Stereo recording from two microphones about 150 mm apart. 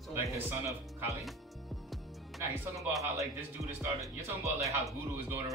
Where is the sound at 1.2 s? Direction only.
Centre (ahead or behind).